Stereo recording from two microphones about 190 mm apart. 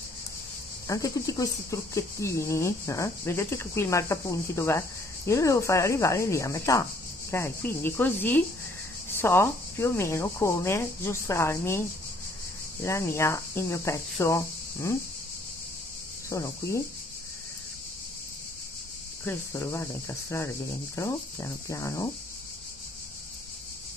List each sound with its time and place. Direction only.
0.8 s speech: 15° left (ahead or behind)
12.8 s speech: 15° left (ahead or behind)
16.3 s speech: 15° left (ahead or behind)
19.2 s speech: 15° left (ahead or behind)